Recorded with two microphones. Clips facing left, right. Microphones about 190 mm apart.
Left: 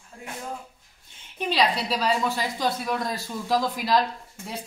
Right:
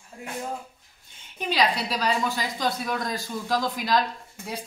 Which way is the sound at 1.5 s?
Centre (ahead or behind).